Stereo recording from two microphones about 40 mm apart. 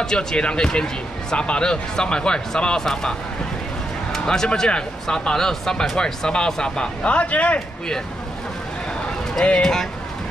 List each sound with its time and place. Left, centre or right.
0.0 s speech: centre
4.3 s speech: centre
7.0 s speech: left
9.4 s speech: centre